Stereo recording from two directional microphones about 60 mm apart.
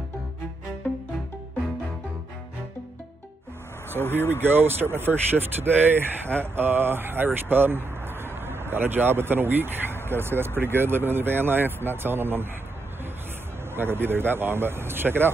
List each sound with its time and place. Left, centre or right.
4.0 s speech: left
4.3 s speech: right
13.7 s speech: right